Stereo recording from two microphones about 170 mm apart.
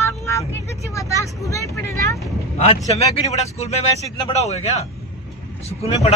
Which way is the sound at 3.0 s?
40° left (ahead or behind).